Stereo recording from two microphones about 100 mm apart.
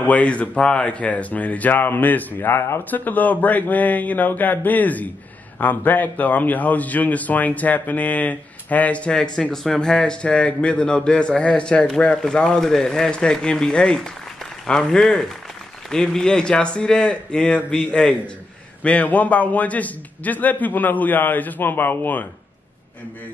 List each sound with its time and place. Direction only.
0.0 s a man's voice: 15° left (ahead or behind)